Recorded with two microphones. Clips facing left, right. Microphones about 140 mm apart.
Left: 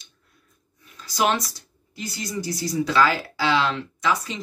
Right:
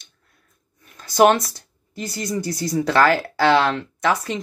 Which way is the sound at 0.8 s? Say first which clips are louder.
Right 8 dB; 55° right (ahead or behind).